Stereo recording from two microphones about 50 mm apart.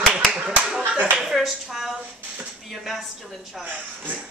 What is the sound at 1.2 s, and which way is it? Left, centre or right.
Speech, centre.